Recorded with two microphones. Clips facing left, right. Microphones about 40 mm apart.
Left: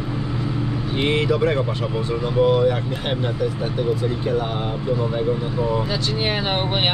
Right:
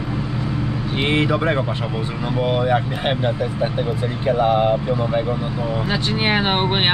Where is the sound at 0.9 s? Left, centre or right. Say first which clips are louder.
Right 1 dB; right.